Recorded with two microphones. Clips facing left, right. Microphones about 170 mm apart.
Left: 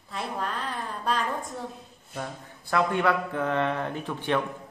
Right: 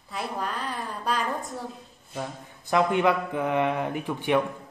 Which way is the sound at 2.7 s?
15° right (ahead or behind).